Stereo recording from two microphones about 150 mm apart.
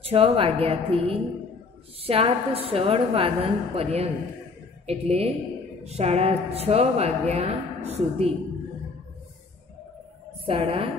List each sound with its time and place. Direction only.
0.0 s a woman's voice: 40° right (ahead or behind)
10.4 s a woman's voice: 35° right (ahead or behind)